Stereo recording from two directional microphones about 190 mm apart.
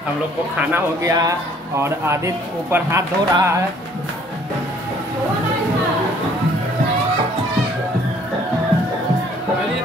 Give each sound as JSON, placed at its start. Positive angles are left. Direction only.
{"t": 0.6, "sound": "a man's voice", "side_deg": -15}